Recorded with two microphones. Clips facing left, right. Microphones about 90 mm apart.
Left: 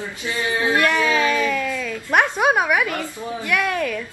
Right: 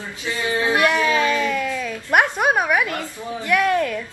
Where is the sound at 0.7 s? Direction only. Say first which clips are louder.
Right 1 dB; 10° right (ahead or behind).